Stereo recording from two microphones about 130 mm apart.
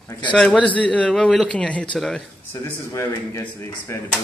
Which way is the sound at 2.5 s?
20° left (ahead or behind).